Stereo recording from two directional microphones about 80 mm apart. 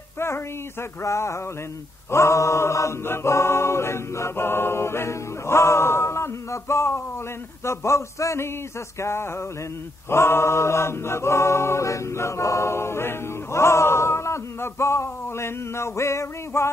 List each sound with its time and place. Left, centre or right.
1.0 s a capella: left